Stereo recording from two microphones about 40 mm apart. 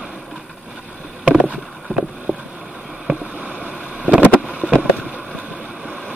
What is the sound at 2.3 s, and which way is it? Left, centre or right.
Boat, right.